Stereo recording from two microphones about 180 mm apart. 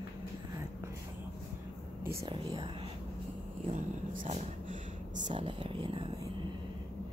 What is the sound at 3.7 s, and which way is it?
Speech, 45° right (ahead or behind).